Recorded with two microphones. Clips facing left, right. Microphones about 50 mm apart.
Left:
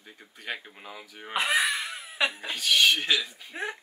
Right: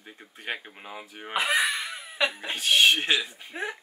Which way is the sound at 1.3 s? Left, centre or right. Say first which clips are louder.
Right 1 dB; centre.